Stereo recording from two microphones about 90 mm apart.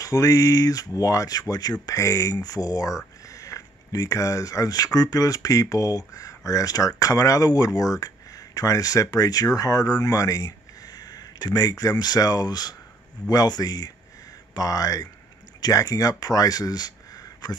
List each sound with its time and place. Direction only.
0.0 s speech: 40° left (ahead or behind)